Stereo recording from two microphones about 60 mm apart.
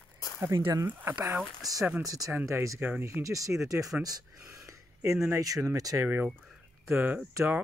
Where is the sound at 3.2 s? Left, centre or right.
Right.